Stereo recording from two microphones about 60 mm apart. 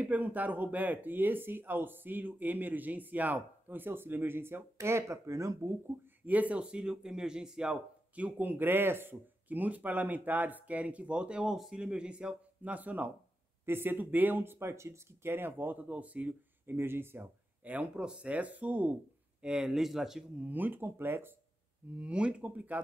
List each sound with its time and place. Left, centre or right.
0.0 s speech: right
4.8 s speech: right
6.2 s a man's voice: right
8.4 s a man's voice: right
13.7 s speech: right
16.7 s speech: right
17.6 s speech: right
19.4 s a man's voice: centre
20.3 s speech: right
21.9 s speech: centre